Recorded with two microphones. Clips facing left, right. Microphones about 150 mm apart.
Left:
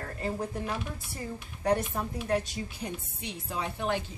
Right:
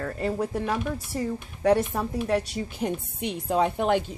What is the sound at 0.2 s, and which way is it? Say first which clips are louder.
Speech: right 5 dB; 90° right.